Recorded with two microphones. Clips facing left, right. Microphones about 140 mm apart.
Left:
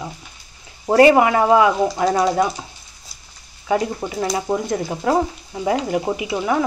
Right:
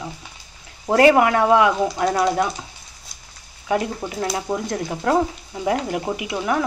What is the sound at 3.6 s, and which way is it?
Speech, centre (ahead or behind).